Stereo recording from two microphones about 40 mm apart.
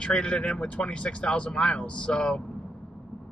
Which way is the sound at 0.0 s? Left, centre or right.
Left.